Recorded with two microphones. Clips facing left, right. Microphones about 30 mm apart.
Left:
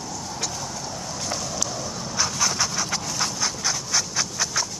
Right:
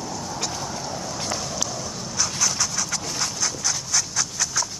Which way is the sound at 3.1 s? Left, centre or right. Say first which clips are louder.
Even; centre.